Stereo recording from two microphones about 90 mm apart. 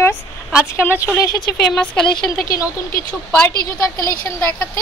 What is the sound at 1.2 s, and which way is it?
A woman's voice, 45° left (ahead or behind).